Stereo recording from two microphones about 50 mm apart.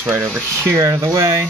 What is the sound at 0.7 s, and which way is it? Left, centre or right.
Speech, right.